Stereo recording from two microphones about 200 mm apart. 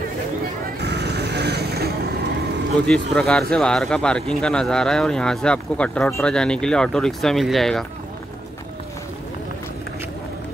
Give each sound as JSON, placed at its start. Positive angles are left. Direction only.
{"t": 0.7, "sound": "music", "side_deg": -55}
{"t": 2.9, "sound": "speech", "side_deg": 5}